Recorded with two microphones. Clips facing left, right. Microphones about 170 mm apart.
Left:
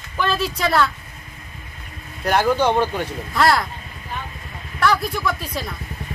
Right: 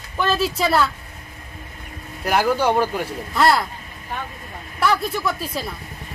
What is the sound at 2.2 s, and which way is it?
Speech, 5° right (ahead or behind).